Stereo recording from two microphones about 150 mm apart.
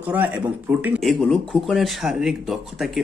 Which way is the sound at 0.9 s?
5° left (ahead or behind).